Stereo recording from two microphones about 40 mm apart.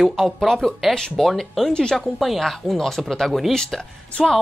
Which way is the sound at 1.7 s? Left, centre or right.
Left.